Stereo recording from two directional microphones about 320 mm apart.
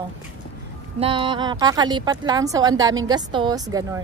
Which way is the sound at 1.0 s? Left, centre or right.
Centre.